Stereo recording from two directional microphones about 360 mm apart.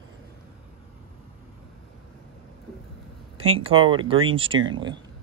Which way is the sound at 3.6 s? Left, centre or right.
Centre.